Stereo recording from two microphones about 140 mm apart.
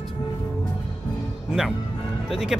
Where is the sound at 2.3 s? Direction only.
Centre (ahead or behind).